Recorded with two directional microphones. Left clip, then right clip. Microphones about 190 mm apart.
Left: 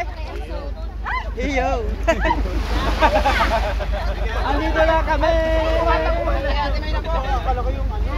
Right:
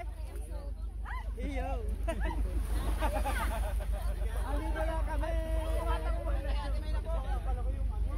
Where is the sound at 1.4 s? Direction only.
5° right (ahead or behind).